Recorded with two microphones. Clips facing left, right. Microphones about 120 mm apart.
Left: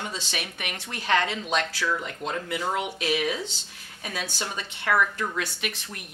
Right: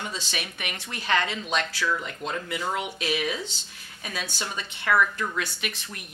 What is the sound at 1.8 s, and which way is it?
A woman's voice, 35° left (ahead or behind).